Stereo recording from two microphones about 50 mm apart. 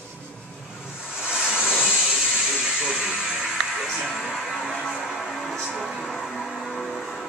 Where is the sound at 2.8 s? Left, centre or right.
Centre.